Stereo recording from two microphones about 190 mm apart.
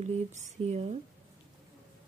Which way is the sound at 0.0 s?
40° right (ahead or behind).